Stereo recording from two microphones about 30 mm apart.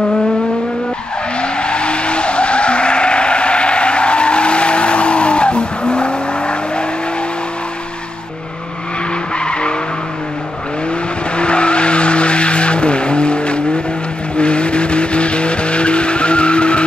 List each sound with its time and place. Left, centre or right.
1.4 s vehicle: left
9.4 s vehicle: left
11.3 s vehicle: left